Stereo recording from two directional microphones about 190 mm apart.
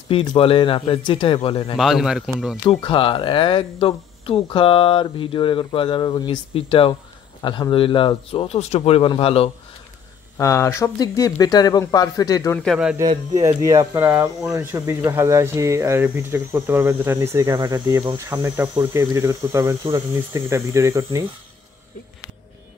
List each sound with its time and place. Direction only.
0.1 s speech: 30° left (ahead or behind)
1.8 s a man's voice: centre (ahead or behind)
2.8 s speech: 25° left (ahead or behind)
10.3 s speech: 15° left (ahead or behind)
12.5 s a man's voice: centre (ahead or behind)
13.0 s speech: 20° right (ahead or behind)